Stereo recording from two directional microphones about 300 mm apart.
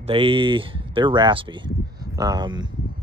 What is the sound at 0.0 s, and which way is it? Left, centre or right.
Speech, centre.